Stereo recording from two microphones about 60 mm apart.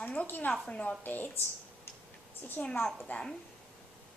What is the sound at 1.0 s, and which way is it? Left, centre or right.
Speech, left.